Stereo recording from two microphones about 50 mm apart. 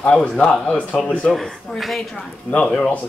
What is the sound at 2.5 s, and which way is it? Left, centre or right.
Speech, left.